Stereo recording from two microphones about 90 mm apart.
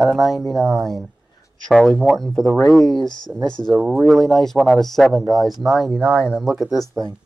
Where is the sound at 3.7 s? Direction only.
15° right (ahead or behind).